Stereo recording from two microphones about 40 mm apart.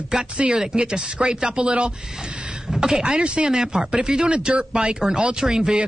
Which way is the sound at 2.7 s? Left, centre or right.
Centre.